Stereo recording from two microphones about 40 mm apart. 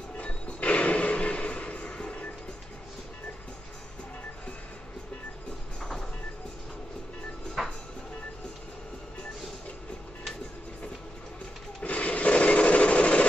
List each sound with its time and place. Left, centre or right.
0.2 s music: left
5.8 s train: centre
7.6 s music: centre
11.8 s rub: left